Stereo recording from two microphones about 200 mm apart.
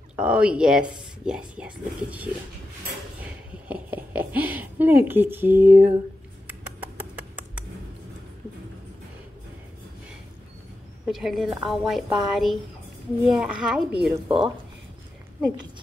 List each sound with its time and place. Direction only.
0.1 s speech: 5° right (ahead or behind)
3.2 s a sound: 5° right (ahead or behind)
11.1 s a woman's voice: centre (ahead or behind)
14.1 s speech: 20° right (ahead or behind)